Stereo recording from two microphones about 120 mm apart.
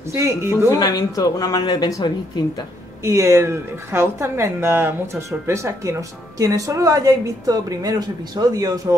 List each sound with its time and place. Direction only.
0.1 s a woman's voice: 20° right (ahead or behind)
0.7 s speech: 35° left (ahead or behind)
3.0 s a woman's voice: 25° right (ahead or behind)